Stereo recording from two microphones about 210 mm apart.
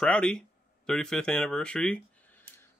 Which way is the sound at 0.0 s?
5° left (ahead or behind).